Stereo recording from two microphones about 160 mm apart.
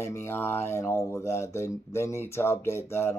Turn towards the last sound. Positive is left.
turn(degrees=15)  # may be behind; listen again after turning